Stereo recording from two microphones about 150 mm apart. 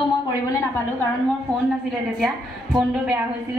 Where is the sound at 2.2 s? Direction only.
5° right (ahead or behind).